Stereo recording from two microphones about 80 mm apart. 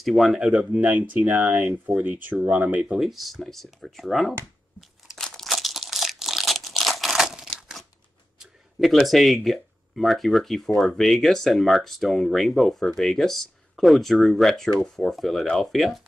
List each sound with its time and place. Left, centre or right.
0.0 s speech: centre
0.7 s speech: centre
3.0 s speech: centre
4.7 s crumpling: centre
8.4 s speech: centre